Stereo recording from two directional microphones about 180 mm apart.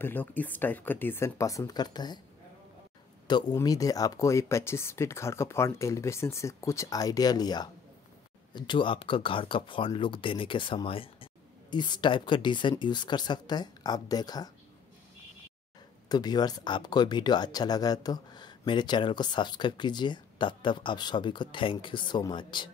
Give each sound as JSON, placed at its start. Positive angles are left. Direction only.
{"t": 0.0, "sound": "speech", "side_deg": 10}
{"t": 3.3, "sound": "speech", "side_deg": 25}
{"t": 16.1, "sound": "speech", "side_deg": 25}